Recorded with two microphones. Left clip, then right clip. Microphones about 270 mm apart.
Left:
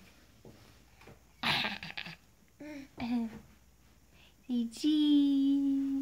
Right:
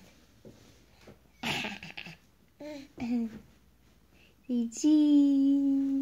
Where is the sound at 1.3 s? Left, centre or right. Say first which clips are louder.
Left 2 dB; centre.